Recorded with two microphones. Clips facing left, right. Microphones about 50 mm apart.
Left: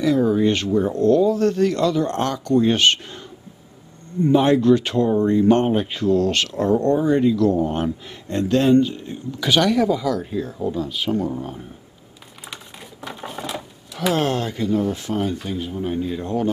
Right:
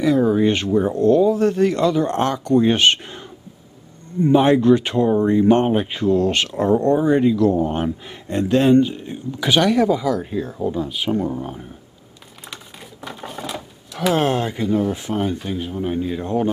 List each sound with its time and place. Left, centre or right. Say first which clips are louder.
0.0 s speech: right 1 dB; centre
4.3 s speech: right 1 dB; right
9.7 s speech: right 2 dB; centre
13.0 s sewing machine: even; centre
14.1 s speech: right 3 dB; right